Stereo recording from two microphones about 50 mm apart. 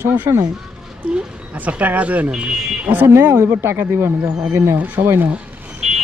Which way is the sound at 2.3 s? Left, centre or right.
Centre.